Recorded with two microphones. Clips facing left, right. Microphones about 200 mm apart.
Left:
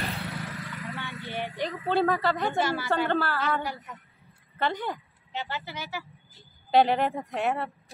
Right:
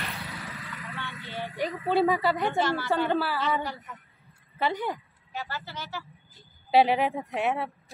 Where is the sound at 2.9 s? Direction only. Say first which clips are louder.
Even; 5° right (ahead or behind).